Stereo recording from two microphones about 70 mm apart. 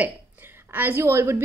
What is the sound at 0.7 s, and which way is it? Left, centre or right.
Speech, right.